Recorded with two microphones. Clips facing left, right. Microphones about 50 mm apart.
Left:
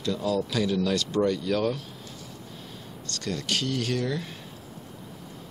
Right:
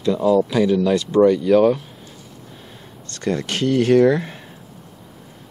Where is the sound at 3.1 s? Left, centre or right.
Right.